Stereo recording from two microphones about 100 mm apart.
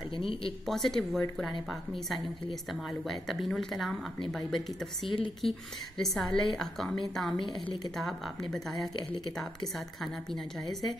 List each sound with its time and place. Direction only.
0.1 s speech: 60° left (ahead or behind)
0.7 s speech: 5° left (ahead or behind)
7.3 s speech: 50° left (ahead or behind)
7.9 s speech: 5° left (ahead or behind)
8.9 s speech: 45° left (ahead or behind)
9.8 s speech: centre (ahead or behind)